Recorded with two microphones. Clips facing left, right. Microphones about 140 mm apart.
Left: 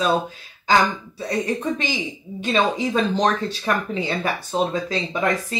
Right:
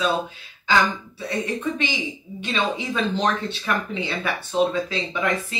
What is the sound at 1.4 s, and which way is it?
Speech, 40° left (ahead or behind).